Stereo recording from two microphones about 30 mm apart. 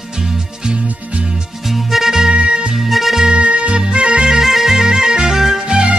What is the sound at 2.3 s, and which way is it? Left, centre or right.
Music, right.